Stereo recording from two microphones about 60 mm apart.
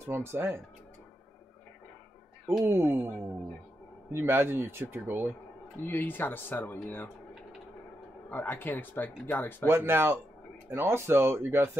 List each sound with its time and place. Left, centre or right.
0.0 s speech: right
2.6 s speech: right
4.1 s speech: right
5.8 s speech: left
8.3 s speech: left
9.7 s speech: right